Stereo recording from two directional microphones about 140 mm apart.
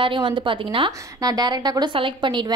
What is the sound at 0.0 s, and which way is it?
A woman's voice, 35° right (ahead or behind).